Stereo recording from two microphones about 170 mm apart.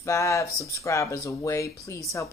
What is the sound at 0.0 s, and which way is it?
Speech, 15° left (ahead or behind).